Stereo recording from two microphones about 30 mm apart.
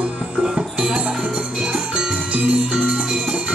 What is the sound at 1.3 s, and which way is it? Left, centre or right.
Music, right.